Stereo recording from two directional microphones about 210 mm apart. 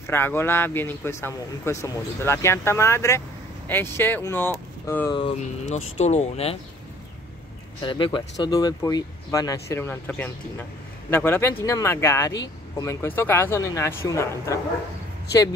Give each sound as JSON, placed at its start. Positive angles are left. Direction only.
{"t": 0.0, "sound": "speech", "side_deg": 10}
{"t": 5.4, "sound": "speech", "side_deg": 35}
{"t": 7.8, "sound": "speech", "side_deg": 25}